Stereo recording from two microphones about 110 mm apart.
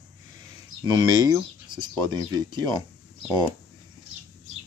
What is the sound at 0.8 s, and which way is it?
Speech, 40° right (ahead or behind).